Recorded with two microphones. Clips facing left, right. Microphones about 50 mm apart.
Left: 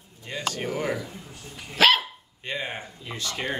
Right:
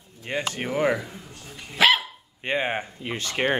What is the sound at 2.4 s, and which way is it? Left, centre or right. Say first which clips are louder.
Speech: right 6 dB; right.